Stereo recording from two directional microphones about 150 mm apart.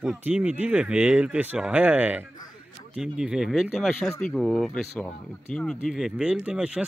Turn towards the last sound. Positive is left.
turn(degrees=-5)  # may be behind; listen again after turning